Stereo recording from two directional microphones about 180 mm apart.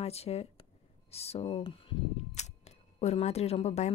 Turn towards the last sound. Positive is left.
turn(degrees=35)  # may be behind; listen again after turning